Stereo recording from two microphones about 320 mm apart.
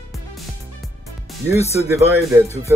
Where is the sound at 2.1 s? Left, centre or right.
Centre.